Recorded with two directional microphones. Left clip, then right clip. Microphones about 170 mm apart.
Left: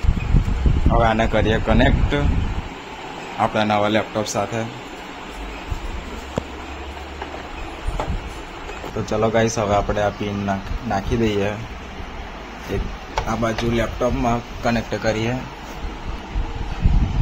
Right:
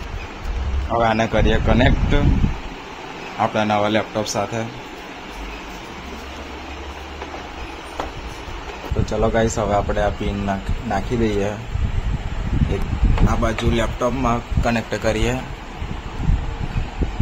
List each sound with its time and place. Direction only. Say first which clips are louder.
0.8 s a man's voice: even; centre (ahead or behind)
3.3 s a man's voice: even; centre (ahead or behind)
9.0 s a man's voice: left 1 dB; 5° left (ahead or behind)
10.4 s speech: even; 10° right (ahead or behind)
11.1 s a man's voice: left 1 dB; centre (ahead or behind)
13.3 s a man's voice: even; centre (ahead or behind)
15.0 s speech: right 1 dB; 25° right (ahead or behind)